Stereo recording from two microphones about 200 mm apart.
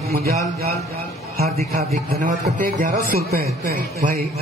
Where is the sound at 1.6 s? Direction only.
35° right (ahead or behind).